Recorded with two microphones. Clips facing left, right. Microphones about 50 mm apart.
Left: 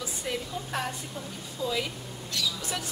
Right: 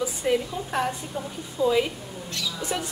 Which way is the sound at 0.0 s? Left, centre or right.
Centre.